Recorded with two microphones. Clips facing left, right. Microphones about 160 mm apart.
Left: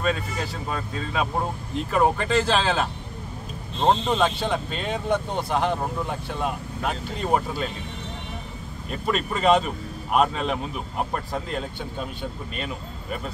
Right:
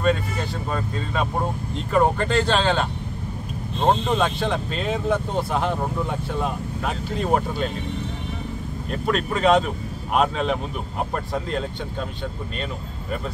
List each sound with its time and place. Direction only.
0.0 s speech: 5° left (ahead or behind)
4.1 s speech: centre (ahead or behind)
8.9 s speech: centre (ahead or behind)